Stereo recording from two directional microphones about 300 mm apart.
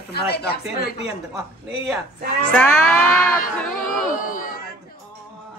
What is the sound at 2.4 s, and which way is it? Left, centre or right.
Speech, centre.